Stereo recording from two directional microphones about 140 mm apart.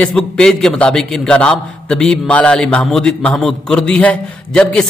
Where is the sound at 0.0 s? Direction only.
5° left (ahead or behind).